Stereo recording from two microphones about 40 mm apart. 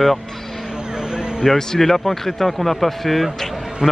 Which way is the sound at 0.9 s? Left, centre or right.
Centre.